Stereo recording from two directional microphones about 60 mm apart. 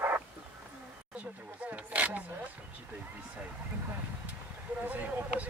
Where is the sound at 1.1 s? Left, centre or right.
Right.